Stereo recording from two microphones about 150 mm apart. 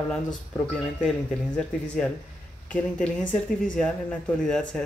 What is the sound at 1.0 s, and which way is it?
Speech, 5° left (ahead or behind).